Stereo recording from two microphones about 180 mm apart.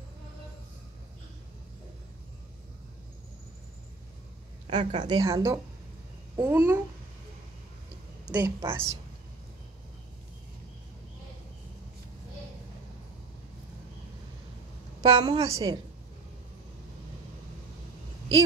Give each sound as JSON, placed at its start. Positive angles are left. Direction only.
{"t": 4.6, "sound": "a woman's voice", "side_deg": -30}
{"t": 8.3, "sound": "speech", "side_deg": -15}
{"t": 15.0, "sound": "a woman's voice", "side_deg": -25}